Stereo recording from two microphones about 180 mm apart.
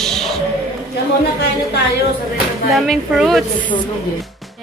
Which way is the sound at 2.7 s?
Centre (ahead or behind).